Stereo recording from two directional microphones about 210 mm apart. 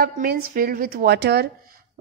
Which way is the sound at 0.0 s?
45° right (ahead or behind).